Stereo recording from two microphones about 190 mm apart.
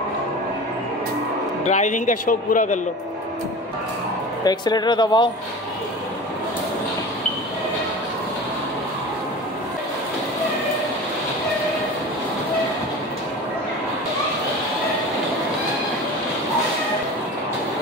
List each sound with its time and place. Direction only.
1.6 s a man's voice: 40° left (ahead or behind)
4.5 s speech: 20° left (ahead or behind)